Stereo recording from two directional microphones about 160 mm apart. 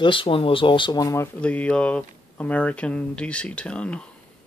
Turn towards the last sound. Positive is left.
turn(degrees=5)  # may be behind; listen again after turning